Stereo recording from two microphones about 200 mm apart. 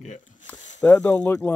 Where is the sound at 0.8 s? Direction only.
10° left (ahead or behind).